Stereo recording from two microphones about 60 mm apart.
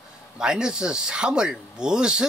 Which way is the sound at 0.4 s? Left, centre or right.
Centre.